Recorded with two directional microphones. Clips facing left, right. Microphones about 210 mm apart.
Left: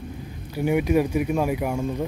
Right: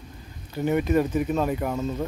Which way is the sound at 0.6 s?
10° left (ahead or behind).